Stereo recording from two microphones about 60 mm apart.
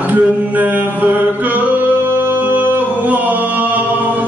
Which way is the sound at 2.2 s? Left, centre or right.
Right.